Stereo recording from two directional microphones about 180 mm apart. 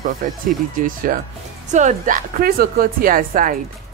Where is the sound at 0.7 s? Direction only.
50° right (ahead or behind).